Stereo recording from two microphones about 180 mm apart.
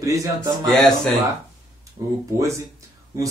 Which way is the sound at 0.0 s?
20° right (ahead or behind).